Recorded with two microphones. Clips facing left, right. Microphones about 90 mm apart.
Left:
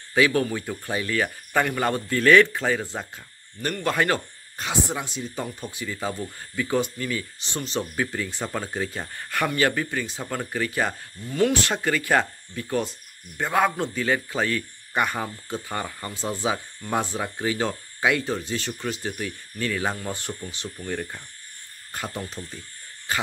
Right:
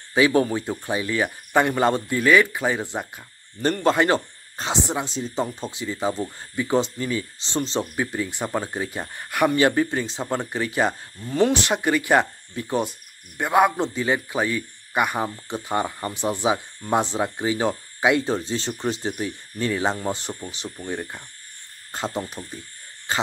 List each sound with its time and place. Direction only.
0.1 s a man's voice: 25° right (ahead or behind)